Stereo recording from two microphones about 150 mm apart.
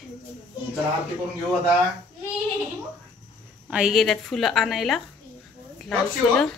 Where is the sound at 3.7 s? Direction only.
5° right (ahead or behind).